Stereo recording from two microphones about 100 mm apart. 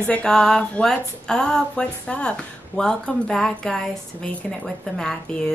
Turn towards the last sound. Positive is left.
turn(degrees=5)  # may be behind; listen again after turning